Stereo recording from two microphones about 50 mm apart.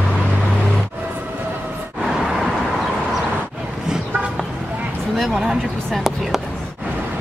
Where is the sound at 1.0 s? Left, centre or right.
Right.